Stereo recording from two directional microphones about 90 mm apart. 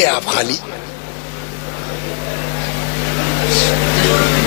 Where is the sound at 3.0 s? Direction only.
20° left (ahead or behind).